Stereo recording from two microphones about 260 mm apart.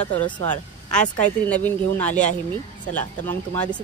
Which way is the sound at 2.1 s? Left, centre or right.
Left.